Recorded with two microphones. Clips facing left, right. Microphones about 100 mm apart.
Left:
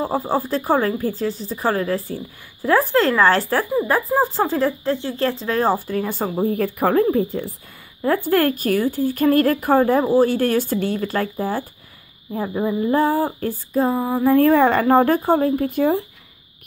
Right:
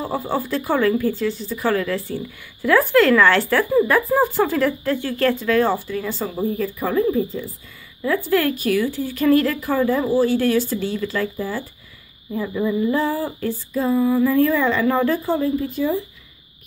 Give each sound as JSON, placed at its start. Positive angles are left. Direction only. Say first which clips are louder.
{"t": 0.0, "sound": "speech", "louder": "left 2 dB", "side_deg": 35}
{"t": 8.0, "sound": "speech", "louder": "left 2 dB", "side_deg": 45}
{"t": 14.3, "sound": "speech", "louder": "left 4 dB", "side_deg": 55}